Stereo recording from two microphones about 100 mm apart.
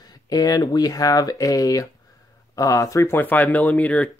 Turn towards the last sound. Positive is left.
turn(degrees=15)  # may be behind; listen again after turning